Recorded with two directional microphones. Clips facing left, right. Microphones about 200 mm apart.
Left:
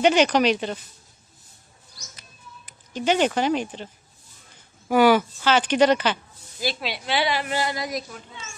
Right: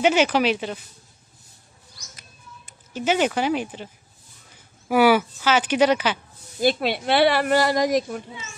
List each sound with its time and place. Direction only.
0.0 s speech: 5° right (ahead or behind)
2.9 s speech: 5° right (ahead or behind)
6.6 s a woman's voice: 55° right (ahead or behind)